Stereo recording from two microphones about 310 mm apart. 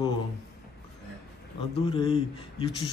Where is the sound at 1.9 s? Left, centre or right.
Centre.